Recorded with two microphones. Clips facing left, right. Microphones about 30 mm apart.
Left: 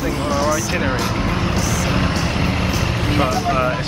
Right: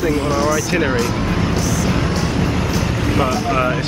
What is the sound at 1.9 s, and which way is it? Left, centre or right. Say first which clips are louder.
Vehicle: right 1 dB; left.